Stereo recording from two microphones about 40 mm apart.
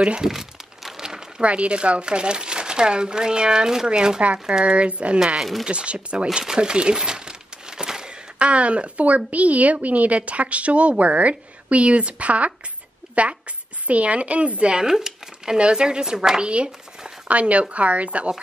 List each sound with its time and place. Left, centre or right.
0.0 s speech: right
0.3 s crumpling: centre
1.4 s speech: right
5.2 s speech: centre
5.7 s speech: right
6.4 s crumpling: centre
8.4 s a woman's voice: right
14.8 s speech: centre
15.5 s speech: right
17.3 s a woman's voice: right